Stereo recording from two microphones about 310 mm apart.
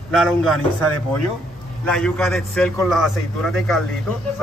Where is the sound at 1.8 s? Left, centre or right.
Centre.